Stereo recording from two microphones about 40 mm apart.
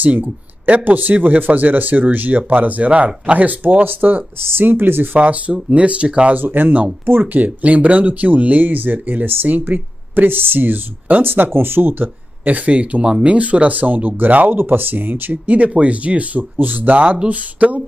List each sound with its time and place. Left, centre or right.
0.0 s speech: right
4.4 s speech: right
5.1 s speech: right
6.3 s speech: right
7.3 s speech: right
12.4 s speech: right
14.6 s speech: right
15.5 s speech: right
16.5 s speech: right